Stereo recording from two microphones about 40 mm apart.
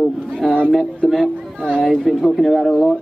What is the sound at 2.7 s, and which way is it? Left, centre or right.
Speech, centre.